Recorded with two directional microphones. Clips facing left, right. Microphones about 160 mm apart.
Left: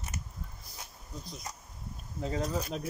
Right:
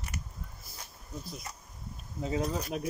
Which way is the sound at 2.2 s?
10° right (ahead or behind).